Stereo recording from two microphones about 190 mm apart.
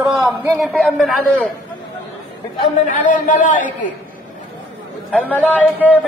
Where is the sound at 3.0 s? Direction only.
45° left (ahead or behind).